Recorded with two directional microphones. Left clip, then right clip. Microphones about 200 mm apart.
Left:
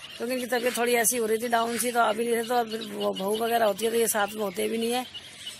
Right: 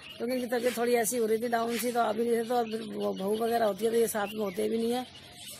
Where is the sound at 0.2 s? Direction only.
15° left (ahead or behind).